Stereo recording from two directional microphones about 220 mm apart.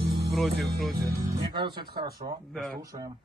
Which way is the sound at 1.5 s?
20° right (ahead or behind).